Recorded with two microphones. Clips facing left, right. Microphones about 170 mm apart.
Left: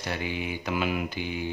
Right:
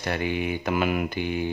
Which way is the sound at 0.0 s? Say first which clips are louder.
Right 5 dB; 55° right (ahead or behind).